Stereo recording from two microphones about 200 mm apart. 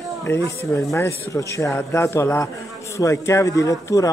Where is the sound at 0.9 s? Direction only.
15° left (ahead or behind).